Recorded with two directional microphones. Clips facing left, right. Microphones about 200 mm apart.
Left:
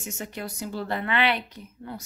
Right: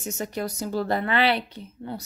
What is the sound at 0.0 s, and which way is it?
A woman's voice, 40° right (ahead or behind).